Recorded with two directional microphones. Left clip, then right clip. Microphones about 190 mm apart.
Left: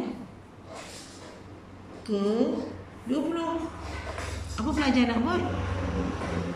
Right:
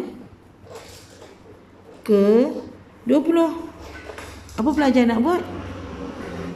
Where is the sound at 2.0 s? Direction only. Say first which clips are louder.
Right 11 dB; 50° right (ahead or behind).